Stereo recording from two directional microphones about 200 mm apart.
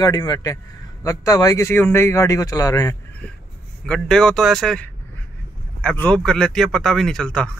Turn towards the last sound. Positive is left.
turn(degrees=5)  # may be behind; listen again after turning